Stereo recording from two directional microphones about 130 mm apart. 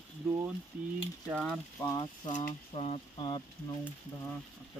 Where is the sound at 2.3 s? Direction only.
70° left (ahead or behind).